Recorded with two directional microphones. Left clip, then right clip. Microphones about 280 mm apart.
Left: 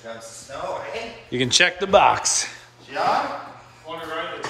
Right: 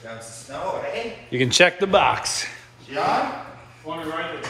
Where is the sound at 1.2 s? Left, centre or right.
Centre.